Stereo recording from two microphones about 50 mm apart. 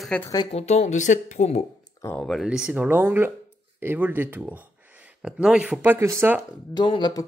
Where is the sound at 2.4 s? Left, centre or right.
Centre.